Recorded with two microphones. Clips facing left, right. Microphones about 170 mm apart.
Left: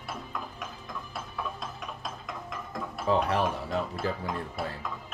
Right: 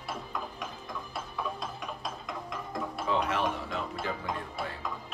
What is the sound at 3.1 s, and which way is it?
Speech, 35° left (ahead or behind).